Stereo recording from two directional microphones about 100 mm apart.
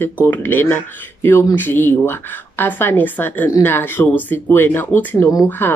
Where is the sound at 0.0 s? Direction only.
20° left (ahead or behind).